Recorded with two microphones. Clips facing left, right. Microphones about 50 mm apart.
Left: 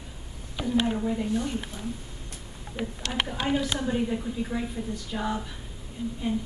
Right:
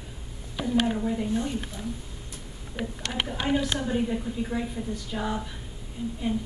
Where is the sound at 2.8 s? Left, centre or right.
Centre.